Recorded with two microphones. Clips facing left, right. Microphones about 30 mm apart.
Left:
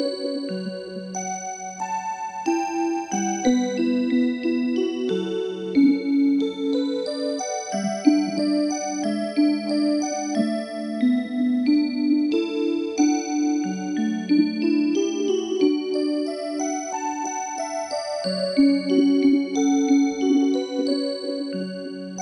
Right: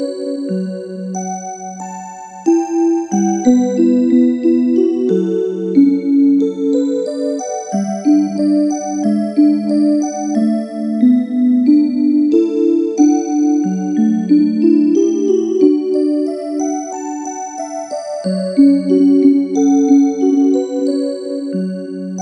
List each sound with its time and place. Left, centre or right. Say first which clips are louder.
2.4 s music: right 11 dB; left
14.1 s music: right 6 dB; centre
18.2 s music: right 8 dB; left